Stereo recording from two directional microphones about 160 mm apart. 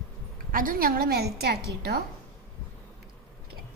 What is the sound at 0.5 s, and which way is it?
A woman's voice, 60° right (ahead or behind).